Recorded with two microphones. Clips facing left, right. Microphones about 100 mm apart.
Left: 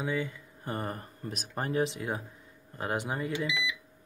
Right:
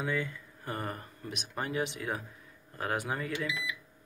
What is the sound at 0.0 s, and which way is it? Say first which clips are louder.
Speech: left 1 dB; 20° left (ahead or behind).